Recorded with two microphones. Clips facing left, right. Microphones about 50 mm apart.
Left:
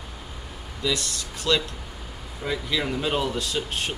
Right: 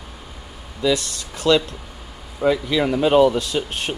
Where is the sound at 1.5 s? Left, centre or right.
Right.